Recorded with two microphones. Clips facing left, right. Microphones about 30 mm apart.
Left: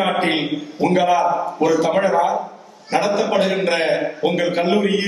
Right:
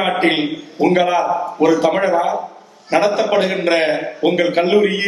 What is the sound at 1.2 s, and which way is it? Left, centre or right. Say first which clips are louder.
Speech: even; centre.